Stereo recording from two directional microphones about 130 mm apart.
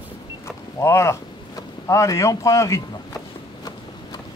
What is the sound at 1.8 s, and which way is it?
Speech, 25° left (ahead or behind).